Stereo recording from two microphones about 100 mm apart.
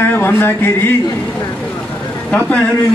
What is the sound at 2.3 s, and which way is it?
Speech, 15° left (ahead or behind).